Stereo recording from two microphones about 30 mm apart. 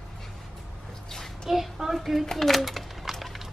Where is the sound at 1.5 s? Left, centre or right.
Centre.